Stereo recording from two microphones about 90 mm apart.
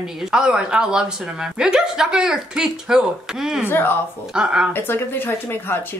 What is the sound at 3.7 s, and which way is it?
Speech, 25° left (ahead or behind).